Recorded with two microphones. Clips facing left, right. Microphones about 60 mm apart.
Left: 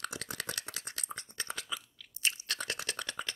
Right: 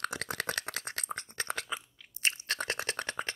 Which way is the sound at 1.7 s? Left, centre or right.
Right.